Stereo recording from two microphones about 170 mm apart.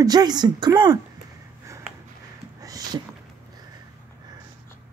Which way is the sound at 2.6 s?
20° right (ahead or behind).